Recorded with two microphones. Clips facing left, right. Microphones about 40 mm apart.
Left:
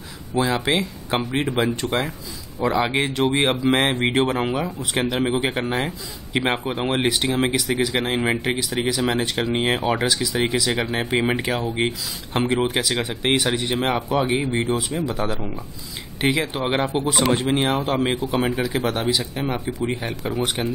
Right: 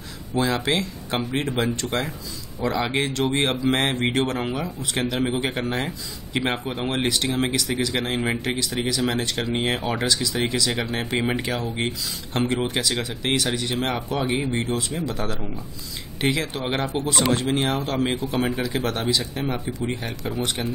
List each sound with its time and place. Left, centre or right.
0.4 s speech: centre